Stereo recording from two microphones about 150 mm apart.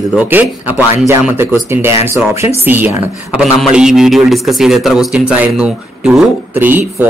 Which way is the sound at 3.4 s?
Centre (ahead or behind).